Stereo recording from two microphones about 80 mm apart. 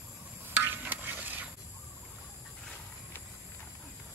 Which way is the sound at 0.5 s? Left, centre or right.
Right.